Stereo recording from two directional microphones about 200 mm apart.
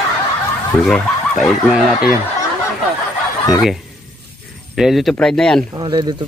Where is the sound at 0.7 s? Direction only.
5° left (ahead or behind).